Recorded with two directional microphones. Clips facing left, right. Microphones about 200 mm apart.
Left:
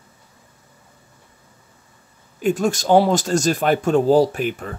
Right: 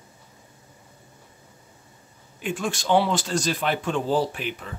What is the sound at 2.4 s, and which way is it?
Speech, 40° left (ahead or behind).